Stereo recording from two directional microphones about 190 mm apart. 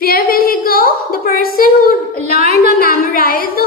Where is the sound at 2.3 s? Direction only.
35° right (ahead or behind).